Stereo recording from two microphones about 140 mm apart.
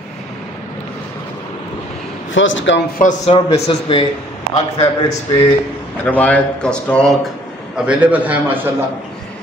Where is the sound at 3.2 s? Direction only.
40° left (ahead or behind).